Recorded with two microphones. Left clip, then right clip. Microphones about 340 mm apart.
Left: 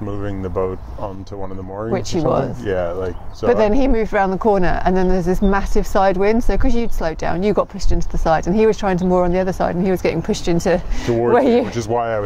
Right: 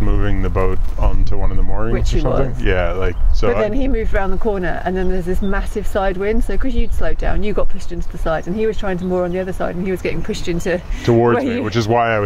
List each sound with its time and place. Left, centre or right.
0.0 s a sound: right
2.1 s speech: left
2.6 s speech: right
3.6 s speech: left
11.1 s speech: right
11.3 s speech: left
11.7 s speech: right